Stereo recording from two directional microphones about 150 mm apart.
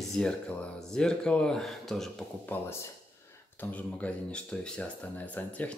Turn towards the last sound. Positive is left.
turn(degrees=10)  # may be behind; listen again after turning